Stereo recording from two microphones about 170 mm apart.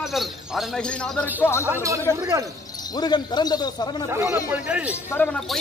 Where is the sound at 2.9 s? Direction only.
25° left (ahead or behind).